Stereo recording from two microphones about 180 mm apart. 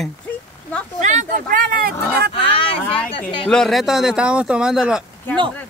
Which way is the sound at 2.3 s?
30° left (ahead or behind).